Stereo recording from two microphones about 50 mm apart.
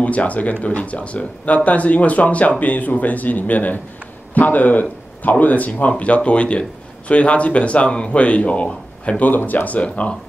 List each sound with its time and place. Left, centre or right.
0.0 s speech: left
9.2 s speech: left
9.7 s speech: left